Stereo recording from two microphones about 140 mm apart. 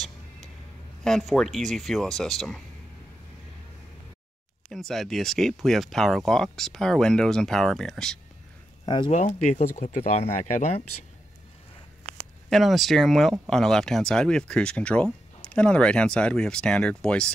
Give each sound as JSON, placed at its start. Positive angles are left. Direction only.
{"t": 1.0, "sound": "speech", "side_deg": 5}
{"t": 4.6, "sound": "speech", "side_deg": 0}
{"t": 8.8, "sound": "speech", "side_deg": 35}
{"t": 9.1, "sound": "speech", "side_deg": 55}
{"t": 12.4, "sound": "speech", "side_deg": 0}